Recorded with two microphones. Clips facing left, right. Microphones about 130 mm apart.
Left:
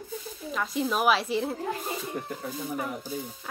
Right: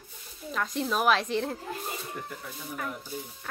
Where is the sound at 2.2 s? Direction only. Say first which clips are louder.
Left 4 dB; 40° left (ahead or behind).